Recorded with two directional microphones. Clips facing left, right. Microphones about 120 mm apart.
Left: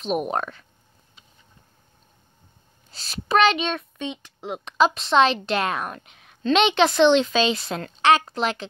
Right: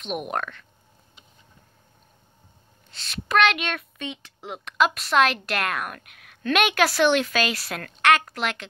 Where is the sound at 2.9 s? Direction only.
40° left (ahead or behind).